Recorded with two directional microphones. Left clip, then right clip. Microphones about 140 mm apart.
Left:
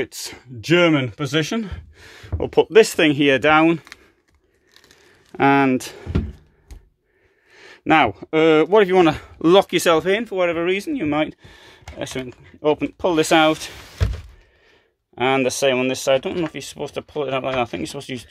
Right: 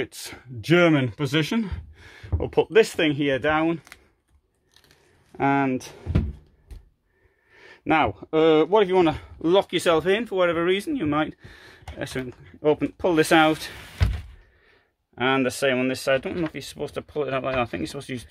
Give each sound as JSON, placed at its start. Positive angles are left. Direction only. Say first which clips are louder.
{"t": 0.0, "sound": "speech", "louder": "left 4 dB", "side_deg": 20}
{"t": 2.0, "sound": "speech", "louder": "left 5 dB", "side_deg": 30}
{"t": 3.1, "sound": "speech", "louder": "left 7 dB", "side_deg": 55}
{"t": 5.4, "sound": "speech", "louder": "left 6 dB", "side_deg": 55}
{"t": 7.5, "sound": "speech", "louder": "left 6 dB", "side_deg": 35}
{"t": 9.4, "sound": "speech", "louder": "left 6 dB", "side_deg": 55}
{"t": 9.9, "sound": "speech", "louder": "left 3 dB", "side_deg": 15}
{"t": 10.2, "sound": "speech", "louder": "left 2 dB", "side_deg": 0}
{"t": 15.1, "sound": "speech", "louder": "left 4 dB", "side_deg": 30}